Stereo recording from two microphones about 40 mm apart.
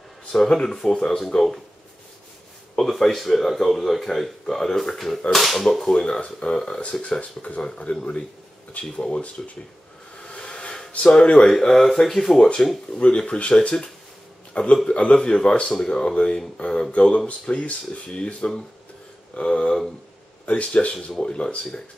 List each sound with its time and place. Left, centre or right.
0.3 s speech: centre
2.9 s speech: centre
4.9 s whip: centre
5.9 s speech: left
7.9 s speech: left
10.3 s a sound: left
11.1 s speech: left
11.4 s speech: centre
13.3 s speech: left